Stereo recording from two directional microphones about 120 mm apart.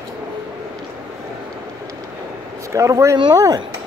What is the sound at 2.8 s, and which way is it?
Speech, 25° right (ahead or behind).